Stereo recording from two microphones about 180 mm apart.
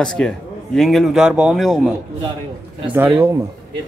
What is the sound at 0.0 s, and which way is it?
Speech, 5° left (ahead or behind).